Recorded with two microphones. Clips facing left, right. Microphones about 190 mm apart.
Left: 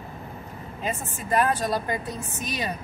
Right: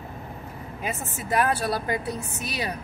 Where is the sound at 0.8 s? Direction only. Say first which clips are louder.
Left 1 dB; 10° right (ahead or behind).